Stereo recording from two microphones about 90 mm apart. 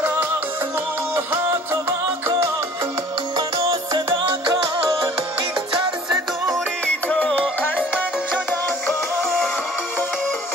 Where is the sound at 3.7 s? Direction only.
60° right (ahead or behind).